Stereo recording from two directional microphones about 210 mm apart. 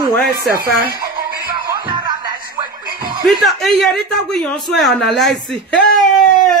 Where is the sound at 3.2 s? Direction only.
Centre (ahead or behind).